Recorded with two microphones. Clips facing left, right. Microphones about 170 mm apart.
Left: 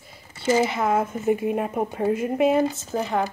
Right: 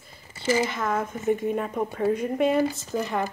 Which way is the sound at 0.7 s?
5° left (ahead or behind).